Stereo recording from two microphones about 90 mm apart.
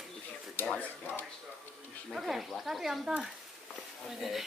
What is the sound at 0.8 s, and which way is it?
Speech, 20° left (ahead or behind).